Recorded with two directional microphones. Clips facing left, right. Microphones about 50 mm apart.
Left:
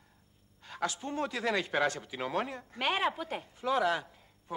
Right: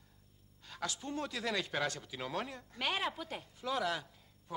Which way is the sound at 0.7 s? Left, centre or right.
Left.